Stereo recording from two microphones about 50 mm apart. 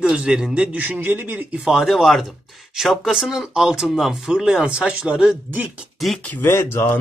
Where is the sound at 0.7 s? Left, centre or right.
Right.